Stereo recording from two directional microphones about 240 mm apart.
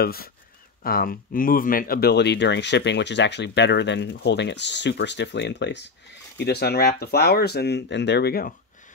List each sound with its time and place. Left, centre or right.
0.0 s speech: left